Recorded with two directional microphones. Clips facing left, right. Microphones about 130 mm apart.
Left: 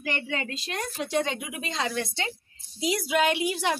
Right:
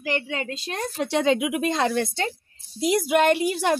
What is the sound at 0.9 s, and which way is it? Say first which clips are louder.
Speech: right 7 dB; 85° right.